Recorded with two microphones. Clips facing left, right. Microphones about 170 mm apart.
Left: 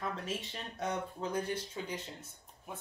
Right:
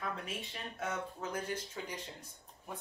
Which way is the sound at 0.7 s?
35° left (ahead or behind).